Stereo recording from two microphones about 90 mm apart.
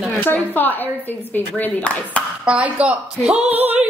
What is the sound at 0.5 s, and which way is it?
Speech, 20° left (ahead or behind).